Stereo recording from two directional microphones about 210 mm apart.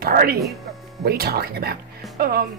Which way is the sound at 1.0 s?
45° right (ahead or behind).